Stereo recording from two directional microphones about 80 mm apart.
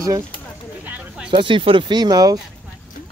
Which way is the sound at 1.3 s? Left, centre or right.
Right.